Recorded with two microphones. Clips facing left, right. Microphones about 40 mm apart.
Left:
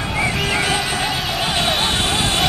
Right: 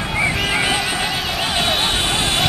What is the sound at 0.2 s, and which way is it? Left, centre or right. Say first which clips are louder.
Music: right 1 dB; centre.